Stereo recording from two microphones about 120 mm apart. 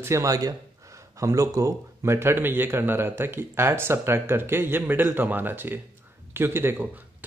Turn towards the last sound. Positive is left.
turn(degrees=-15)  # may be behind; listen again after turning